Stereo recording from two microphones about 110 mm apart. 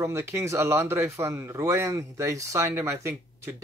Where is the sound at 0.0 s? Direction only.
25° right (ahead or behind).